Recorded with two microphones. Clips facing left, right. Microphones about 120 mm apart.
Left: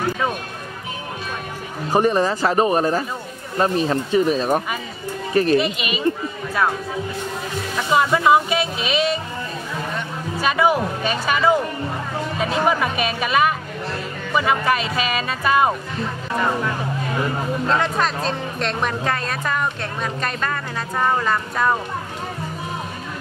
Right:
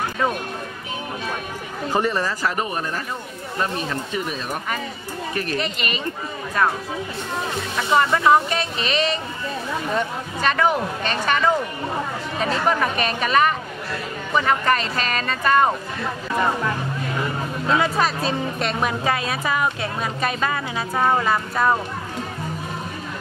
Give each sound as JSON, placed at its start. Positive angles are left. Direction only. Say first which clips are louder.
{"t": 1.9, "sound": "speech", "louder": "left 5 dB", "side_deg": 20}
{"t": 5.6, "sound": "speech", "louder": "left 4 dB", "side_deg": 5}
{"t": 7.7, "sound": "speech", "louder": "left 1 dB", "side_deg": 5}
{"t": 10.4, "sound": "speech", "louder": "left 2 dB", "side_deg": 10}
{"t": 17.6, "sound": "speech", "louder": "right 2 dB", "side_deg": -5}